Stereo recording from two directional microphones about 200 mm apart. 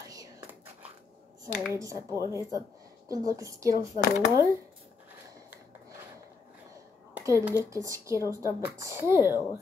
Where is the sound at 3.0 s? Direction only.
15° right (ahead or behind).